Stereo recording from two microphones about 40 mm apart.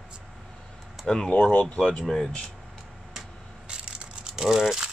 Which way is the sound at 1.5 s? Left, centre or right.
Left.